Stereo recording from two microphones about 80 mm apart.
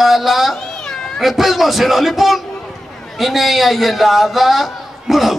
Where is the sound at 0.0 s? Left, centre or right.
Centre.